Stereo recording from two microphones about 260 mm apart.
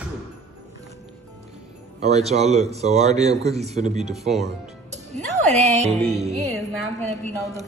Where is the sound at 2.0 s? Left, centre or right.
Right.